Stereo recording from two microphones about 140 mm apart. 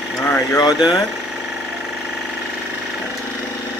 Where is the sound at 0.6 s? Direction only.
30° left (ahead or behind).